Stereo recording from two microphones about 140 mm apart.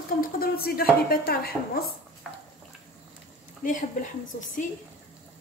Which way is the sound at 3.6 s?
70° left (ahead or behind).